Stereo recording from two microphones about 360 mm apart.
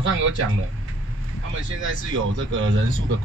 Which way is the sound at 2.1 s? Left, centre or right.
Right.